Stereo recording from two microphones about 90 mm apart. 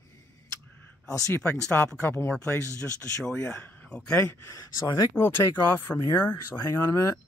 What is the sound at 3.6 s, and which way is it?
Speech, 20° left (ahead or behind).